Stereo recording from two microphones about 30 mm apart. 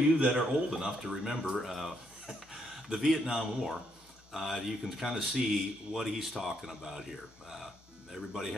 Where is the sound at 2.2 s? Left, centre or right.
Right.